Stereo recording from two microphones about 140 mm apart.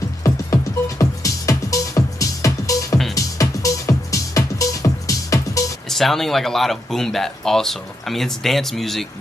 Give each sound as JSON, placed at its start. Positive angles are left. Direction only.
{"t": 0.2, "sound": "music", "side_deg": 25}
{"t": 5.9, "sound": "speech", "side_deg": 0}